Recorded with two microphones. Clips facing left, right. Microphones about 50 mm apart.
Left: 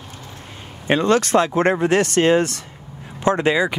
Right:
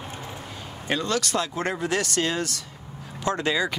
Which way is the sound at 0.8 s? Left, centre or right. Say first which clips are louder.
Left 9 dB; left.